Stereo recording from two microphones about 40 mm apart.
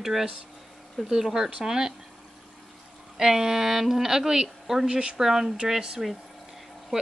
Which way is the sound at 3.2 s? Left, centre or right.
Centre.